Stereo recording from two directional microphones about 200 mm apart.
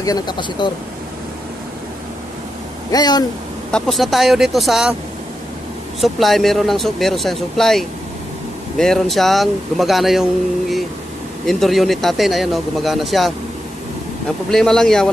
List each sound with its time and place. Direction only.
0.0 s speech: 20° left (ahead or behind)
2.9 s speech: 20° left (ahead or behind)
3.7 s speech: centre (ahead or behind)
5.9 s speech: centre (ahead or behind)
11.4 s speech: centre (ahead or behind)
14.5 s speech: centre (ahead or behind)